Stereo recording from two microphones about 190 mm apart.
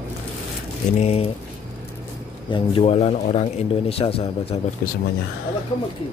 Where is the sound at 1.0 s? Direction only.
30° left (ahead or behind).